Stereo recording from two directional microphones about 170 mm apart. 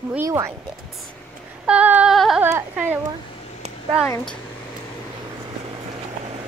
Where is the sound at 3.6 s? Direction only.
40° right (ahead or behind).